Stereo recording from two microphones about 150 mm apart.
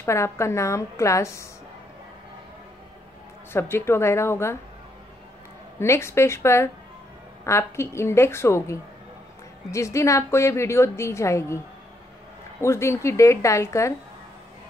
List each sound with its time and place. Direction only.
0.0 s a woman's voice: 20° left (ahead or behind)
3.5 s a woman's voice: 15° left (ahead or behind)
5.8 s a woman's voice: 15° left (ahead or behind)